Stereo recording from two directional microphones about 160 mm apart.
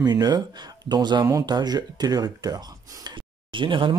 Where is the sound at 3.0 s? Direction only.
30° right (ahead or behind).